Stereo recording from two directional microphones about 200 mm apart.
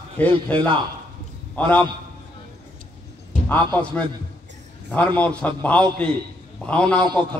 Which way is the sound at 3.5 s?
10° left (ahead or behind).